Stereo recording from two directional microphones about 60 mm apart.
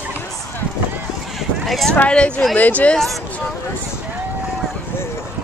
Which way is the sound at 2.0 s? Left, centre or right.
Centre.